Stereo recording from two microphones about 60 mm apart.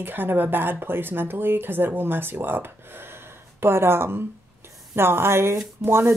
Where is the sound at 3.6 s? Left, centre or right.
Right.